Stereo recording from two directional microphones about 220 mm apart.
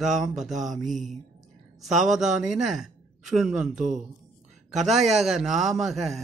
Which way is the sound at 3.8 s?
35° right (ahead or behind).